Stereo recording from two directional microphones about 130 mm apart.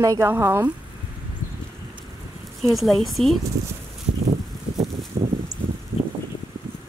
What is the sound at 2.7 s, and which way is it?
Speech, centre (ahead or behind).